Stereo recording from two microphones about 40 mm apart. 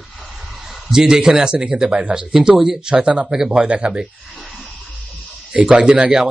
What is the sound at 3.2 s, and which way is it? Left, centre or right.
Speech, centre.